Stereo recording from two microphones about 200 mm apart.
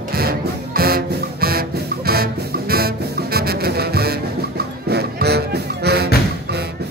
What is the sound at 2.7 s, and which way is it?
Music, 50° right (ahead or behind).